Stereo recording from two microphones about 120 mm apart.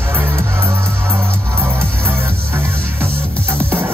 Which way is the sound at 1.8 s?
10° left (ahead or behind).